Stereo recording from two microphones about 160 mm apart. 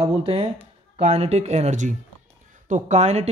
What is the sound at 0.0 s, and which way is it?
A woman's voice, 40° right (ahead or behind).